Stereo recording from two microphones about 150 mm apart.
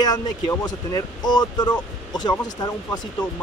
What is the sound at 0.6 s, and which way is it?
Speech, 25° left (ahead or behind).